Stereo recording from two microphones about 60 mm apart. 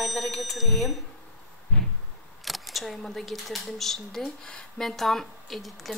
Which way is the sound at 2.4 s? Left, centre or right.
Centre.